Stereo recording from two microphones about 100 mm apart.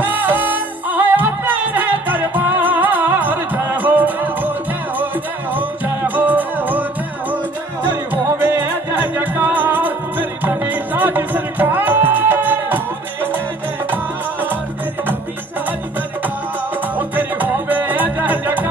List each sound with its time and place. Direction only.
0.0 s music: 20° right (ahead or behind)
5.6 s music: 15° right (ahead or behind)
8.3 s music: 25° right (ahead or behind)
17.1 s music: 20° right (ahead or behind)